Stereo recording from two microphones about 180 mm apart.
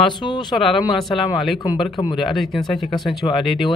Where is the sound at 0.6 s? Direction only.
Centre (ahead or behind).